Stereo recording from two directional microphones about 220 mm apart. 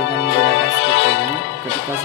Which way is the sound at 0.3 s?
60° left (ahead or behind).